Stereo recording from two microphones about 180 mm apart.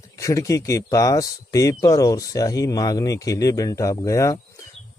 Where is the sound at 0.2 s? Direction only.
15° left (ahead or behind).